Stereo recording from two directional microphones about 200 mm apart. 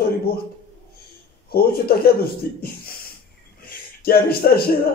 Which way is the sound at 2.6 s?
50° left (ahead or behind).